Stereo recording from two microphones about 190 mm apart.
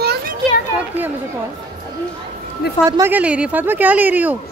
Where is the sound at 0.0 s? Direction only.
55° right (ahead or behind).